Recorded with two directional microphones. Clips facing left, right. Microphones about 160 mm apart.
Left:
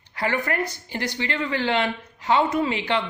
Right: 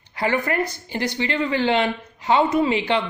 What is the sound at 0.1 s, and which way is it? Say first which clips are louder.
Speech: right 3 dB; 20° right (ahead or behind).